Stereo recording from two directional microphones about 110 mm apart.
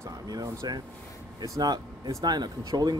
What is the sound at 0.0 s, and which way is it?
Speech, 35° right (ahead or behind).